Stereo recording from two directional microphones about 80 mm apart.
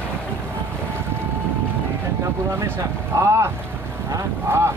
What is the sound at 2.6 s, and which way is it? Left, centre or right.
Speech, right.